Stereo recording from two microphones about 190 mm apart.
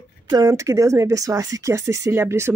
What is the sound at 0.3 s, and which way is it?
Speech, 15° right (ahead or behind).